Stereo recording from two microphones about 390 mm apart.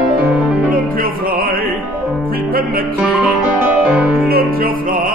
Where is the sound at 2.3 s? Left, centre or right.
Right.